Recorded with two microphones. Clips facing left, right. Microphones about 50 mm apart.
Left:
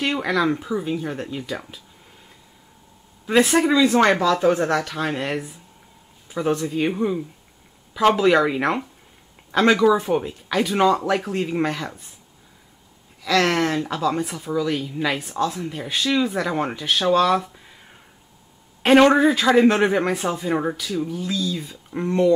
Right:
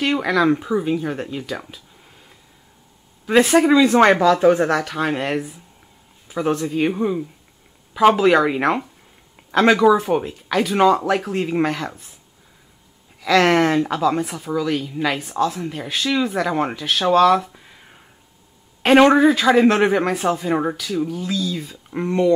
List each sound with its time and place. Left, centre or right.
0.2 s speech: centre
0.5 s speech: centre
3.3 s speech: centre
4.6 s speech: centre
9.8 s speech: right
10.0 s speech: centre
13.2 s speech: centre
15.6 s speech: centre
17.1 s a sound: centre
18.8 s speech: centre
21.4 s speech: centre